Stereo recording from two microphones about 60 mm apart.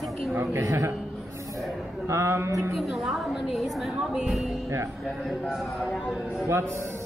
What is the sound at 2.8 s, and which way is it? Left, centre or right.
Speech, centre.